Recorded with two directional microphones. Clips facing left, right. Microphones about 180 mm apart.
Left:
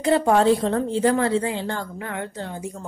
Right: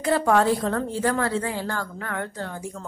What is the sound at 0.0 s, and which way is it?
A woman's voice, 25° left (ahead or behind).